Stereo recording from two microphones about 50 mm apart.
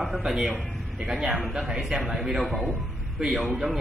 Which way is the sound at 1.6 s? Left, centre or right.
Centre.